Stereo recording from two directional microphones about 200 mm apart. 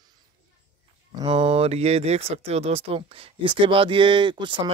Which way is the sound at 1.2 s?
30° right (ahead or behind).